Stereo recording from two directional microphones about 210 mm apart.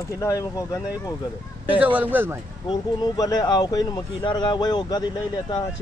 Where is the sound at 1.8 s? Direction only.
5° right (ahead or behind).